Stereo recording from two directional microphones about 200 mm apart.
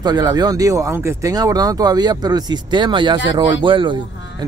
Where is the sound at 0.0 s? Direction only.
20° right (ahead or behind).